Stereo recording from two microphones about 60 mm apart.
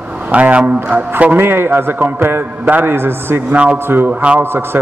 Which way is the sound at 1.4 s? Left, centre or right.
Right.